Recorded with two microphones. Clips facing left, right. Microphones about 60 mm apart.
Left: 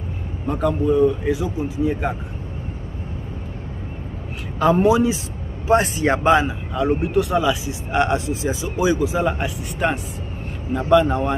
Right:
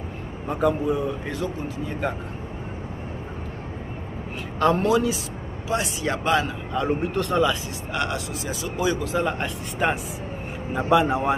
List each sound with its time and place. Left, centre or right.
0.5 s speech: centre
1.3 s a man's voice: centre
4.6 s speech: centre
4.8 s speech: centre
5.7 s speech: left
6.7 s speech: centre
7.9 s a man's voice: left; by 9.9 s centre
10.7 s speech: centre